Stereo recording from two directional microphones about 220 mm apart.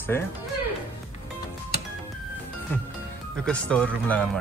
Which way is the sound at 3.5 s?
5° left (ahead or behind).